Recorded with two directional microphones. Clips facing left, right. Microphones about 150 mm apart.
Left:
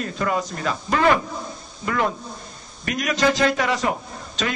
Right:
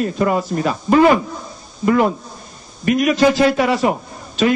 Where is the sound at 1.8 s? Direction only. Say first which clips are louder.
Right 8 dB; 15° right (ahead or behind).